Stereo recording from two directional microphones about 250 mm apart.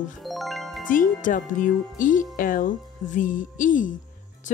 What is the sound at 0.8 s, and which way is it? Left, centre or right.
Speech, left.